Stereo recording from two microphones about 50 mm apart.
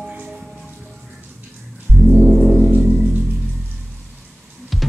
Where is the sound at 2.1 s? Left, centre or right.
Centre.